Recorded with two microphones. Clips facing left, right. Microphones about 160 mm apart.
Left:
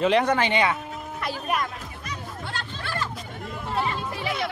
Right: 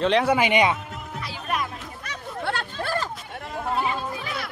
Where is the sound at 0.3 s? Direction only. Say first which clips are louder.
Right 2 dB; 10° right (ahead or behind).